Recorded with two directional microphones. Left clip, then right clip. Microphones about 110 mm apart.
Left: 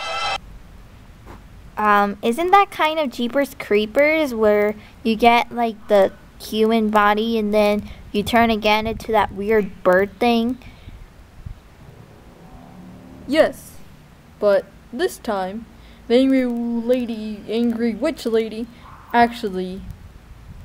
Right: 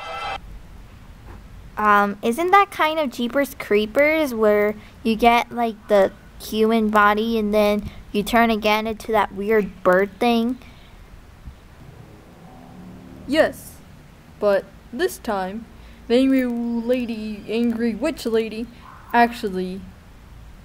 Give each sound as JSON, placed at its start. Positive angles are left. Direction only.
{"t": 0.0, "sound": "a sound", "side_deg": 25}
{"t": 1.8, "sound": "a woman's voice", "side_deg": 5}
{"t": 13.3, "sound": "a woman's voice", "side_deg": 0}